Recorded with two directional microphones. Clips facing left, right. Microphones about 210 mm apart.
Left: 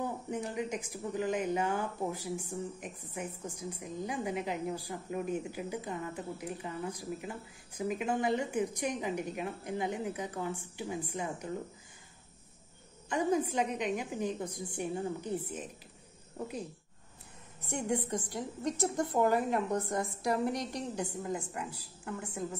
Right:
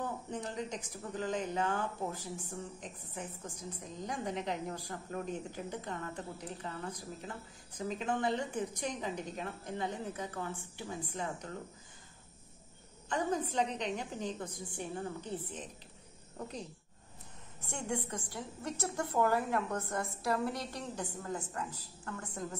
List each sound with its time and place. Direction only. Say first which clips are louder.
0.0 s speech: left 3 dB; 10° left (ahead or behind)
13.1 s speech: left 4 dB; 10° left (ahead or behind)
17.6 s speech: left 5 dB; 15° left (ahead or behind)